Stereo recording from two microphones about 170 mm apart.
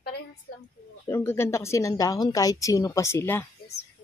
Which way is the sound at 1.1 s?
15° left (ahead or behind).